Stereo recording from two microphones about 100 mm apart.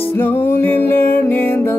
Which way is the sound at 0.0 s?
20° left (ahead or behind).